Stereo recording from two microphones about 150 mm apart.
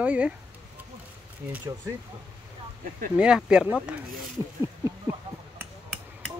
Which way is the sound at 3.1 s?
5° right (ahead or behind).